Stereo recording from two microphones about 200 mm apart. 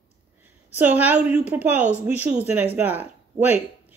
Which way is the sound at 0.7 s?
10° right (ahead or behind).